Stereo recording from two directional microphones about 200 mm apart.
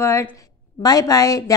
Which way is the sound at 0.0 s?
15° left (ahead or behind).